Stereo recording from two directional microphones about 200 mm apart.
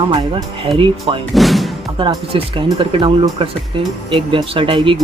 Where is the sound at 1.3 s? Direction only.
Centre (ahead or behind).